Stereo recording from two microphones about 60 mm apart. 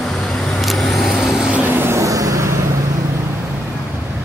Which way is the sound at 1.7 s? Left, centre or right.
Right.